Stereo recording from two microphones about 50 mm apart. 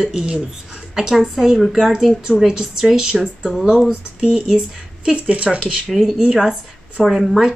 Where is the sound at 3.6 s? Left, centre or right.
Centre.